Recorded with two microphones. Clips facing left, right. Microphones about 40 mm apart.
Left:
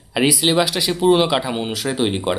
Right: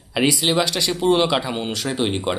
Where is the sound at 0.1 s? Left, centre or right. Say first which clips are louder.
Left 2 dB; centre.